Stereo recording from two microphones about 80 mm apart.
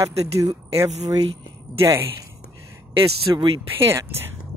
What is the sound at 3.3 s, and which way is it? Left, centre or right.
Speech, right.